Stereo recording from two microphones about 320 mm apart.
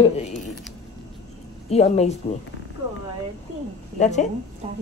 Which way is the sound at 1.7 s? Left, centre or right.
Centre.